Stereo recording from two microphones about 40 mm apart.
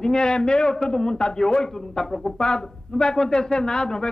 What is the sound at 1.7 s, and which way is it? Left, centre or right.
A man's voice, centre.